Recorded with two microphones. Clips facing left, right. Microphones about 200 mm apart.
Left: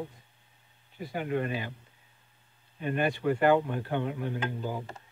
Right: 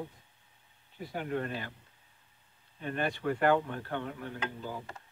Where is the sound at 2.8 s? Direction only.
10° left (ahead or behind).